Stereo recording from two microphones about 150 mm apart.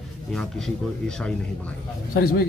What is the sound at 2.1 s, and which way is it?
Speech, 80° left.